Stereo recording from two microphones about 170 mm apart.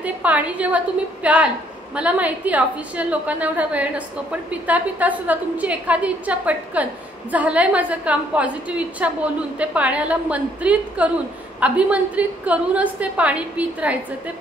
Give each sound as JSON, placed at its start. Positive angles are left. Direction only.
{"t": 0.0, "sound": "a woman's voice", "side_deg": -10}